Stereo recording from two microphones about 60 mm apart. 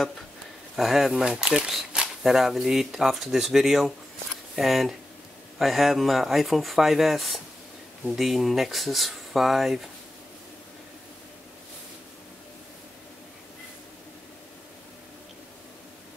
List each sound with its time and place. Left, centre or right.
0.7 s speech: centre